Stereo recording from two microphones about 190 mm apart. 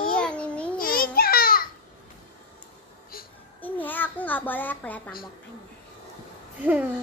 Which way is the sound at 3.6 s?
10° left (ahead or behind).